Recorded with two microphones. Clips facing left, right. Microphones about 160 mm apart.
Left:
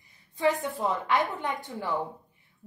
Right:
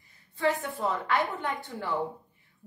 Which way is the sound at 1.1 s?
20° left (ahead or behind).